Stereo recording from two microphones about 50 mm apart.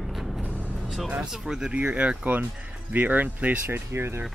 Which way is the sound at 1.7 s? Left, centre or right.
Right.